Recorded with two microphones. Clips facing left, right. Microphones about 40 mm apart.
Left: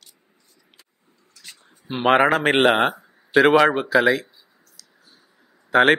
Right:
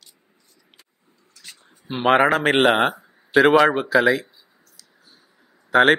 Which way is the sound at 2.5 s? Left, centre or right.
Centre.